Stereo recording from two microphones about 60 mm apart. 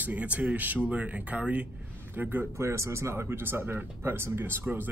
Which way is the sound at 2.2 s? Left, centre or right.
Right.